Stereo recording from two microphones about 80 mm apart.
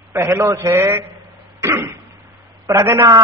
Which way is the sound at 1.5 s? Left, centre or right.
Right.